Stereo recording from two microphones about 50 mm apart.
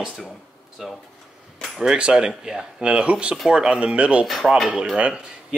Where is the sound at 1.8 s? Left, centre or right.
Centre.